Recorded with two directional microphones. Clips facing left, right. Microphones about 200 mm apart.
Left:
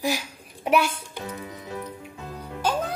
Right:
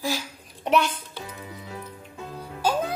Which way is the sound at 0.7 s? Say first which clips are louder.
Left 1 dB; 10° left (ahead or behind).